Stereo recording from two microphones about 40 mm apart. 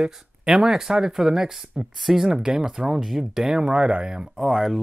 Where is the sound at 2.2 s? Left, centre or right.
Centre.